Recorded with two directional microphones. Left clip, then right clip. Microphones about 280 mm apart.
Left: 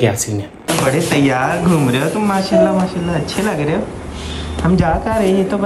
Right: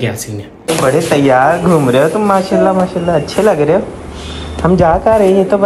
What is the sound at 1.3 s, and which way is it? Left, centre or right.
Speech, centre.